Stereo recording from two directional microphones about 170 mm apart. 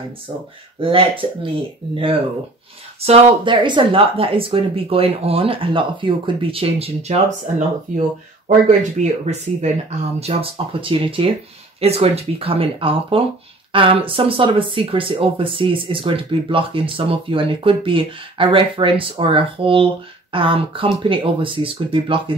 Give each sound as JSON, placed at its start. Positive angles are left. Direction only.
{"t": 0.7, "sound": "speech", "side_deg": -30}
{"t": 3.0, "sound": "speech", "side_deg": -30}